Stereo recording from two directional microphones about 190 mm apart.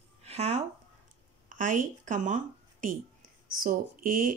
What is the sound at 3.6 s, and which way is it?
Speech, 45° right (ahead or behind).